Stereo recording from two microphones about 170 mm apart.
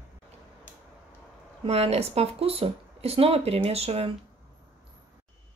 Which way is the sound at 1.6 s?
35° right (ahead or behind).